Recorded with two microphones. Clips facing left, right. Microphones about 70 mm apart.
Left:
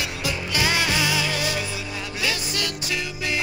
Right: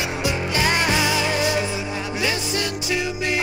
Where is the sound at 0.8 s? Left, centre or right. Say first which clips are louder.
Right 3 dB; centre.